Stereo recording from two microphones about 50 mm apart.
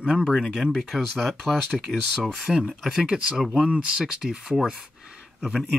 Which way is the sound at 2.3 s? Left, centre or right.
Centre.